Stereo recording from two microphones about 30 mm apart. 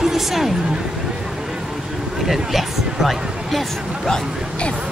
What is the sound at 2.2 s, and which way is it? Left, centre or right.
Speech, centre.